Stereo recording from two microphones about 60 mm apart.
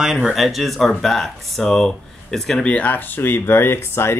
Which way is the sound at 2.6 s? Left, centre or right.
Left.